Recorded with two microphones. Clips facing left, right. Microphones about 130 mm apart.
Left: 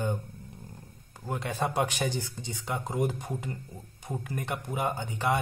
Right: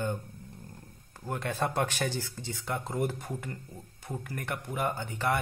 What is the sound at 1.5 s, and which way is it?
Speech, 15° left (ahead or behind).